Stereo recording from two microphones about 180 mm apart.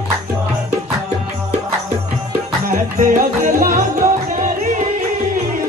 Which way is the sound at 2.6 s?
50° right (ahead or behind).